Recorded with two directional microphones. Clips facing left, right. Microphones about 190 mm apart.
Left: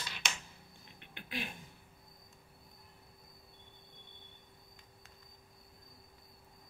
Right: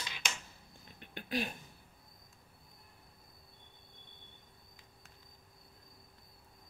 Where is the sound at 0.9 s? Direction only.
40° right (ahead or behind).